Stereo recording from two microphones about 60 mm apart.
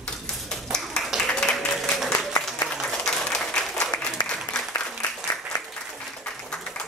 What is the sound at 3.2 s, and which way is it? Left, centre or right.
Applause, centre.